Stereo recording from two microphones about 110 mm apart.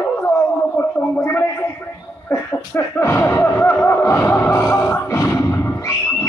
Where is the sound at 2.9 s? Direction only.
25° left (ahead or behind).